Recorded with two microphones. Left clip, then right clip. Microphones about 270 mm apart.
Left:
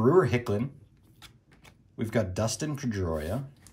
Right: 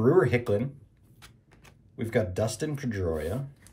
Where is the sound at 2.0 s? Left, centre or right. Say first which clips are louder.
Right 2 dB; centre.